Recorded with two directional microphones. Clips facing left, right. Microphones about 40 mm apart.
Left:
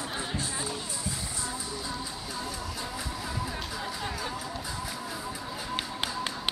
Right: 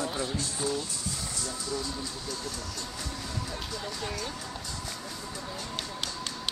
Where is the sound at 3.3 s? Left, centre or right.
Centre.